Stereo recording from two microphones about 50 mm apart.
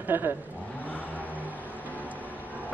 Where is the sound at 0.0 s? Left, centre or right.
Right.